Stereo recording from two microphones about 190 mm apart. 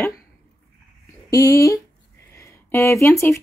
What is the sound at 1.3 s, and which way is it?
Speech, 15° left (ahead or behind).